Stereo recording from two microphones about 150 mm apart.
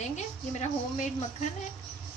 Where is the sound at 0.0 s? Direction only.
50° left (ahead or behind).